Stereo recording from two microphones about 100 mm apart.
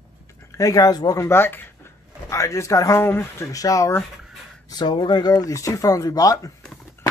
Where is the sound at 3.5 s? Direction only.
35° left (ahead or behind).